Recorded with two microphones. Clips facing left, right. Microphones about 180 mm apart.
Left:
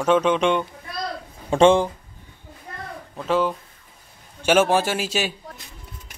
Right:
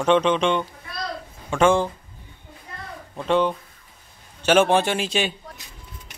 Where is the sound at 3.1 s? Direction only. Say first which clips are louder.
Right 1 dB; 5° left (ahead or behind).